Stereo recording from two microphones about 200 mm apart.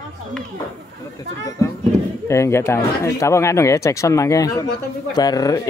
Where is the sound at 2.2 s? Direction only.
15° left (ahead or behind).